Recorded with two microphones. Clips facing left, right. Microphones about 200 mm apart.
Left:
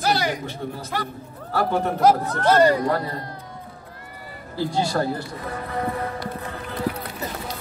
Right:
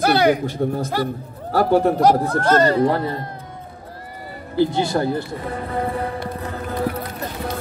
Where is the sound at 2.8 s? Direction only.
25° right (ahead or behind).